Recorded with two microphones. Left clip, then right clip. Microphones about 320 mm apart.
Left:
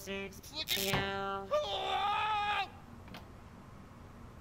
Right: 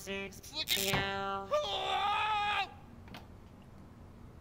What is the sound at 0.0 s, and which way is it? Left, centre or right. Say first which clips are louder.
Music: right 1 dB; centre.